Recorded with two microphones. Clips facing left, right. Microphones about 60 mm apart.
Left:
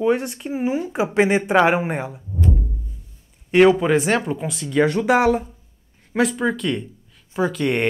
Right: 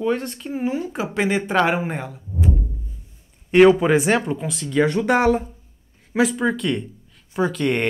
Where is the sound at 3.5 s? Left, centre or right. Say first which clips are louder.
Right 1 dB; centre.